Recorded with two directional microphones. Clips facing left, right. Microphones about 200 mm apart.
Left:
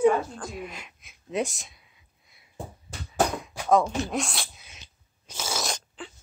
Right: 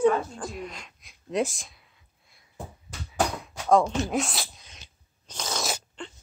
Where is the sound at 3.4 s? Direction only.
Centre (ahead or behind).